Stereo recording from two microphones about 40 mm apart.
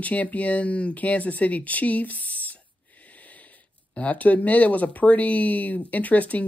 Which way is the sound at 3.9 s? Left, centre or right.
Left.